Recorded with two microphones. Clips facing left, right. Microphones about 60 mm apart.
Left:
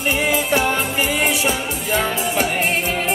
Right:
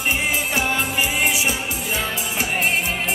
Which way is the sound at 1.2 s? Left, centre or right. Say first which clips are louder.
Left 2 dB; centre.